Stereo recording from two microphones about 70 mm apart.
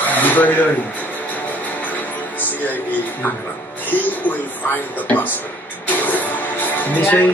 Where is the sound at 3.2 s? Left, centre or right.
Left.